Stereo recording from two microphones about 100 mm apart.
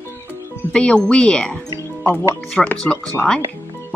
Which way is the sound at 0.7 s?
10° left (ahead or behind).